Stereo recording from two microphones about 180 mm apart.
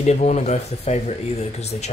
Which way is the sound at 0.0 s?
40° left (ahead or behind).